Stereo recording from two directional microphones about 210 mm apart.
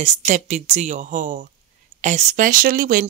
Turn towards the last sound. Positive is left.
turn(degrees=-40)  # may be behind; listen again after turning